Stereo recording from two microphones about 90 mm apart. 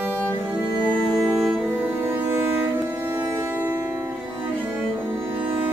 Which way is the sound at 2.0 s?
25° right (ahead or behind).